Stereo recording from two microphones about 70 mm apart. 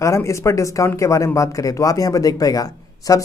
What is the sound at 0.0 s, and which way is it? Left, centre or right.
Speech, left.